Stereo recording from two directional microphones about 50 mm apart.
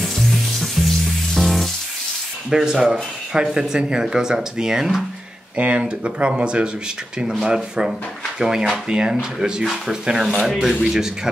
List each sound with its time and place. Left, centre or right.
0.0 s music: centre
2.5 s speech: centre
5.6 s speech: right
9.4 s speech: centre